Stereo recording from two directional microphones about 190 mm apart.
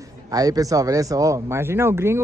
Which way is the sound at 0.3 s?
20° right (ahead or behind).